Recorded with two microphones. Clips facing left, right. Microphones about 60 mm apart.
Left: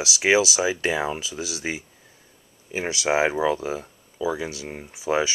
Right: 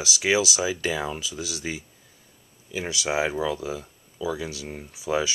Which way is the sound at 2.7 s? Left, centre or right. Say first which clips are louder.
Left 4 dB; left.